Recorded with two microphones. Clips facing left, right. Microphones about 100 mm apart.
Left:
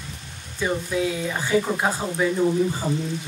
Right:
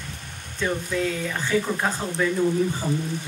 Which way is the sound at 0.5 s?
15° left (ahead or behind).